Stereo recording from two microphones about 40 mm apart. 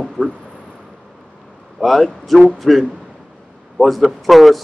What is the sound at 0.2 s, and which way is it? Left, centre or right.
Speech, right.